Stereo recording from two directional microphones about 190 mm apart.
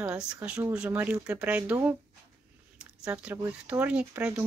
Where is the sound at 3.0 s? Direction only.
5° right (ahead or behind).